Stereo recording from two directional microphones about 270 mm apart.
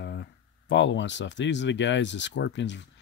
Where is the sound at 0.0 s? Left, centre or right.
Left.